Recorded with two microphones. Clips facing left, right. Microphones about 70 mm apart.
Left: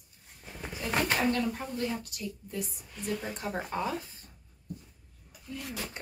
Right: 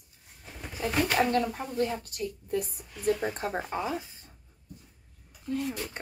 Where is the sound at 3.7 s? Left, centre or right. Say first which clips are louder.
Right 1 dB; centre.